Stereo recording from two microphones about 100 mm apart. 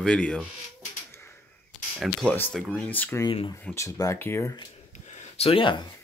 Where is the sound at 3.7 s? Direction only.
35° left (ahead or behind).